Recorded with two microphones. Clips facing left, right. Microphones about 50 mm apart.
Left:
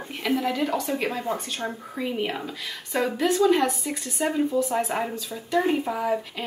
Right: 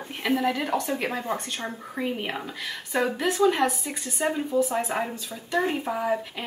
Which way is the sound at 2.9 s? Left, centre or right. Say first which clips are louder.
Left 2 dB; right.